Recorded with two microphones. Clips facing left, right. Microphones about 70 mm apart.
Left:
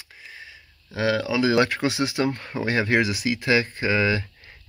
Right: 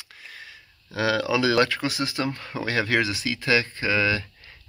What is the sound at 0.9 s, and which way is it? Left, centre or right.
Speech, centre.